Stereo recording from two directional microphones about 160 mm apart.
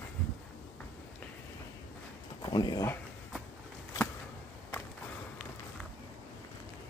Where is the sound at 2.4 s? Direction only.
25° left (ahead or behind).